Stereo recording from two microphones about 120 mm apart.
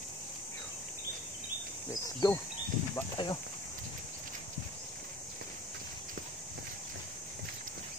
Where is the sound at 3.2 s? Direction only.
45° left (ahead or behind).